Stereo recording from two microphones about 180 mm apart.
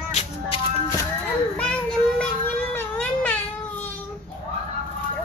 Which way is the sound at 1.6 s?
5° left (ahead or behind).